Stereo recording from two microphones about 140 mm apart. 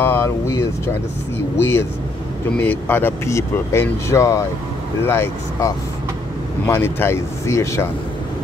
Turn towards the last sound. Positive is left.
turn(degrees=20)  # may be behind; listen again after turning